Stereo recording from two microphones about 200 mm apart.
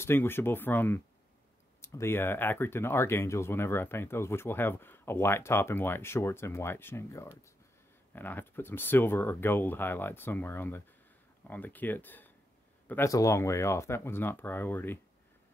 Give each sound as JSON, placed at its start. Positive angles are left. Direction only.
{"t": 0.0, "sound": "speech", "side_deg": 10}